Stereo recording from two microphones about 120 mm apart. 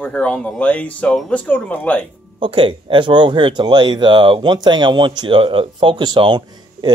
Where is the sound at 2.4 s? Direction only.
50° right (ahead or behind).